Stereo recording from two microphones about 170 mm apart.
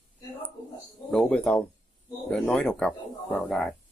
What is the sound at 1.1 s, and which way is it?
Speech, 5° left (ahead or behind).